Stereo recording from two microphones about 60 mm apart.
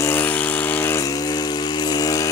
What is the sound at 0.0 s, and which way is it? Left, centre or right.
Vehicle, left.